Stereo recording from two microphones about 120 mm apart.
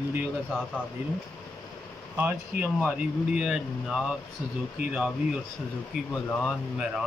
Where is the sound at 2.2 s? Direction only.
15° right (ahead or behind).